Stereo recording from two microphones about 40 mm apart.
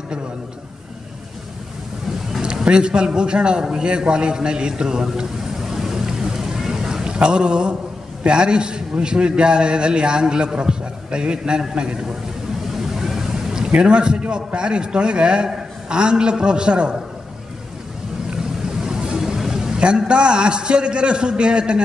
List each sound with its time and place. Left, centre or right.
2.4 s a man's voice: right
5.6 s a sound: centre
8.3 s a man's voice: right
12.7 s vehicle: centre
13.7 s a man's voice: right
18.3 s vehicle: centre
19.8 s a man's voice: right